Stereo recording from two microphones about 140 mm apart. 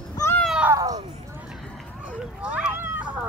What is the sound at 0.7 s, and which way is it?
Cat, 25° right (ahead or behind).